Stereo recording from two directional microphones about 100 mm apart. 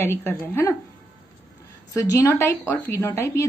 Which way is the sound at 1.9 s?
30° left (ahead or behind).